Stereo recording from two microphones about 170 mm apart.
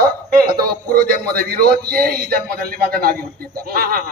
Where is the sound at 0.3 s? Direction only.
60° right (ahead or behind).